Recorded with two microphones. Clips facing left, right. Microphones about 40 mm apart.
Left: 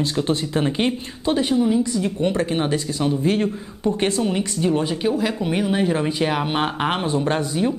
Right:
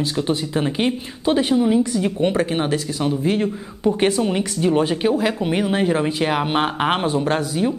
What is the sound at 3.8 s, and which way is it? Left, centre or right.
Speech, centre.